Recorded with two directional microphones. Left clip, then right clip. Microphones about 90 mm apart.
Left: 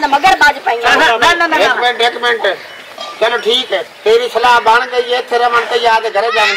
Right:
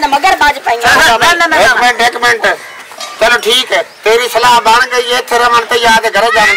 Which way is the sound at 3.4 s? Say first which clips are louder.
Right 4 dB; 30° right (ahead or behind).